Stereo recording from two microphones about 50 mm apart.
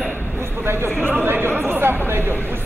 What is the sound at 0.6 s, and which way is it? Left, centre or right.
Speech, right.